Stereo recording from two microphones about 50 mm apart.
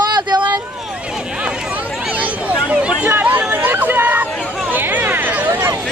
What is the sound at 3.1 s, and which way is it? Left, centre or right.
Speech, right.